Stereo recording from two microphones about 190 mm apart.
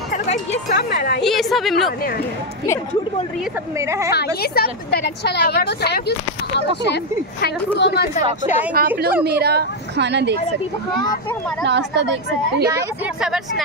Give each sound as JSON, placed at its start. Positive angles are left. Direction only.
{"t": 0.1, "sound": "music", "side_deg": 35}
{"t": 0.7, "sound": "a woman's voice", "side_deg": 50}
{"t": 1.2, "sound": "a woman's voice", "side_deg": 0}
{"t": 1.9, "sound": "a woman's voice", "side_deg": 50}
{"t": 3.7, "sound": "speech", "side_deg": -15}
{"t": 4.6, "sound": "a woman's voice", "side_deg": 55}
{"t": 8.7, "sound": "a woman's voice", "side_deg": -50}
{"t": 11.6, "sound": "a woman's voice", "side_deg": -65}
{"t": 12.7, "sound": "a woman's voice", "side_deg": -5}